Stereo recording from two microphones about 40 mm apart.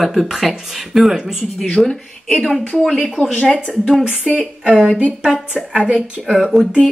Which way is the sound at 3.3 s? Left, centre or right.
Left.